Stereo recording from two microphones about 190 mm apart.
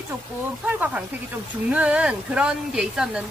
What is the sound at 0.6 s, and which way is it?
Speech, 10° right (ahead or behind).